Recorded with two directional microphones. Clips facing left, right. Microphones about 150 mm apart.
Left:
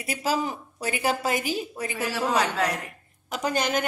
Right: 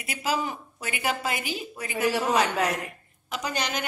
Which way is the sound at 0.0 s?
35° left (ahead or behind).